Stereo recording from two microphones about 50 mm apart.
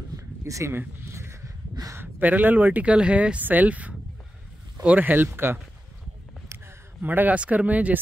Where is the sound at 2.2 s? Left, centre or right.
Right.